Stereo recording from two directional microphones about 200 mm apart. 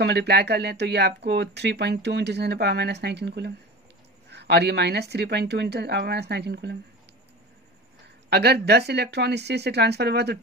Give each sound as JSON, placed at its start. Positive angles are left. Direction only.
{"t": 0.0, "sound": "speech", "side_deg": -55}
{"t": 8.3, "sound": "speech", "side_deg": -55}